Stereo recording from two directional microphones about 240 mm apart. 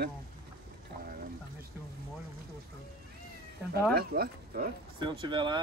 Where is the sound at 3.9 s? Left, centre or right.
Right.